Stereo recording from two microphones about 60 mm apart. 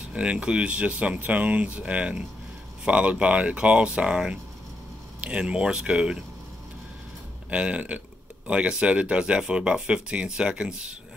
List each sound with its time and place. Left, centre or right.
0.1 s speech: centre
7.5 s speech: centre